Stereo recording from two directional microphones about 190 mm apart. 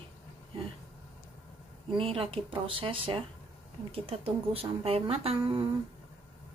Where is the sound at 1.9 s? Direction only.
30° right (ahead or behind).